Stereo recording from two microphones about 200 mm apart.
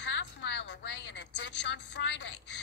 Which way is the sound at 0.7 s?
65° left (ahead or behind).